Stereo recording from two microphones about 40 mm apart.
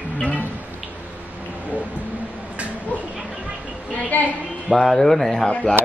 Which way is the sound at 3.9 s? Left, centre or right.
Left.